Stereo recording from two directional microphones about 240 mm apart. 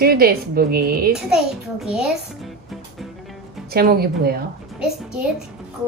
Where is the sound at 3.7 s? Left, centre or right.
Right.